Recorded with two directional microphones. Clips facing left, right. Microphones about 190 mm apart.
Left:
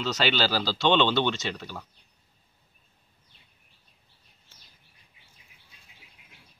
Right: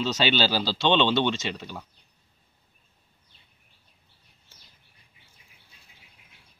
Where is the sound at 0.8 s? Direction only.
20° right (ahead or behind).